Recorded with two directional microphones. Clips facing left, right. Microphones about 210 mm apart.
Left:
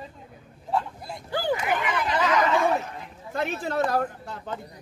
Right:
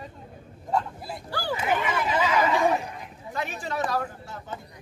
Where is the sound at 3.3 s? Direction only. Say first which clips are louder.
Left 4 dB; 55° left (ahead or behind).